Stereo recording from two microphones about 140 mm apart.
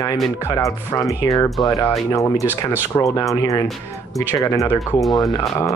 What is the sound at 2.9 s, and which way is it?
Speech, 25° left (ahead or behind).